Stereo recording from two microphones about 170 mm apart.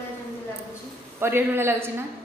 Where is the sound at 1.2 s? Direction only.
15° right (ahead or behind).